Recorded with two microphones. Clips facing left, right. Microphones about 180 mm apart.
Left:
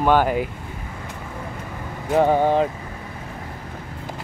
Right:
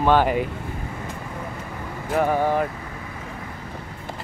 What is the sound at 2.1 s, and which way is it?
Speech, 20° left (ahead or behind).